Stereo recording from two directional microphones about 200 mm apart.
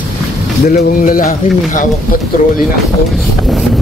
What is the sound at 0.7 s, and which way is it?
Speech, 40° left (ahead or behind).